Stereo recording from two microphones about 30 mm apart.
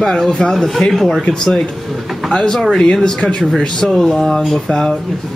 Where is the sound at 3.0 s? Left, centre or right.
Left.